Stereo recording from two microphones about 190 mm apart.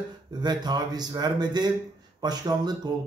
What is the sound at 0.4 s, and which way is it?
Speech, 20° right (ahead or behind).